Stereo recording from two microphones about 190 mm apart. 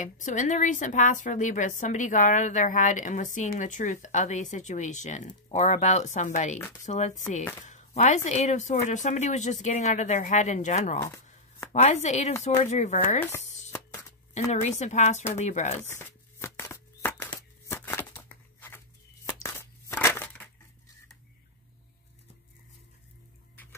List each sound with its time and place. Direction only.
0.0 s a woman's voice: 40° left (ahead or behind)
13.7 s a sound: 10° left (ahead or behind)
14.5 s a woman's voice: 35° left (ahead or behind)
15.9 s shuffling cards: 10° left (ahead or behind)
19.2 s crushing: 15° left (ahead or behind)